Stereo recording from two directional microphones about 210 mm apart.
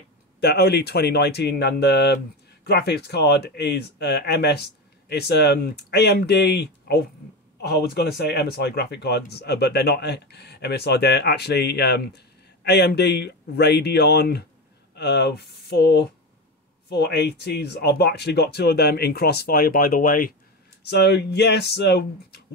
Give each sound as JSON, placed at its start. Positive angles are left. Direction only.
{"t": 0.4, "sound": "speech", "side_deg": 50}
{"t": 20.8, "sound": "speech", "side_deg": 55}